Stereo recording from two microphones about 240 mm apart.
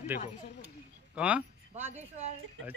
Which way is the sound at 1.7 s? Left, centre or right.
Right.